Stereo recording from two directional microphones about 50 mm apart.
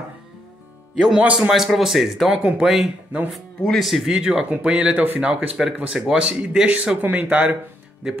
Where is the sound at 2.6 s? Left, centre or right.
Centre.